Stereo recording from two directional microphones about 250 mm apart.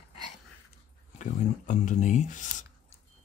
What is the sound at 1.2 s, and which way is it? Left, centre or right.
Speech, left.